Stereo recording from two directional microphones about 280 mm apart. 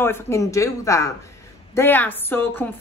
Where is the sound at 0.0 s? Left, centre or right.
Centre.